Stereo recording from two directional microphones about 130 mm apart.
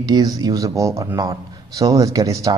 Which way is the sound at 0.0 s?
30° right (ahead or behind).